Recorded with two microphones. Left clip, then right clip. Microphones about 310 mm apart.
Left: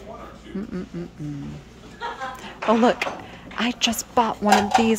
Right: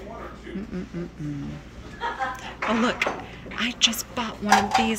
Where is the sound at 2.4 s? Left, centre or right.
Centre.